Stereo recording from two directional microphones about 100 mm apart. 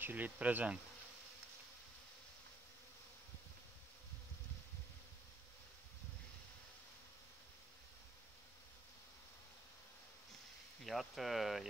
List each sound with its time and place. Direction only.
0.0 s bee: 15° right (ahead or behind)
10.8 s speech: centre (ahead or behind)